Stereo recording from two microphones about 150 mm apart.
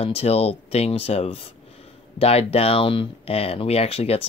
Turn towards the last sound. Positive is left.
turn(degrees=40)  # may be behind; listen again after turning